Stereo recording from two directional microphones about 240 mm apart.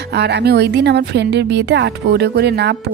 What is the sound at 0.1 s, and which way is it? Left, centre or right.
A woman's voice, right.